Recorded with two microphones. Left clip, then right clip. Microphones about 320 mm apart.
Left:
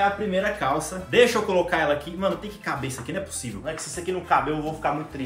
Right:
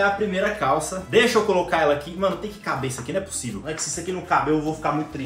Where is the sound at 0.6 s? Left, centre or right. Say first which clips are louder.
Right 3 dB; centre.